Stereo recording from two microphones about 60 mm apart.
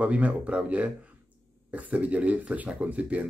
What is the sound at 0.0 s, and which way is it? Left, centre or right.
Speech, right.